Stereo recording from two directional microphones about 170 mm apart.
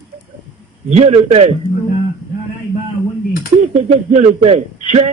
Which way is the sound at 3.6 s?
45° right (ahead or behind).